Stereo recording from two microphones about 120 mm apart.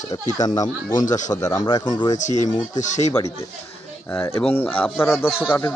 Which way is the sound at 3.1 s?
30° left (ahead or behind).